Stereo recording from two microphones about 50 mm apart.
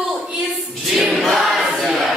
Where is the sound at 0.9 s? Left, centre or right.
Centre.